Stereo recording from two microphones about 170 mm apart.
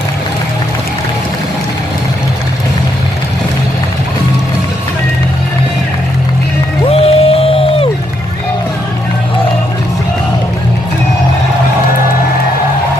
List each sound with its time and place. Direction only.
6.9 s music: 35° left (ahead or behind)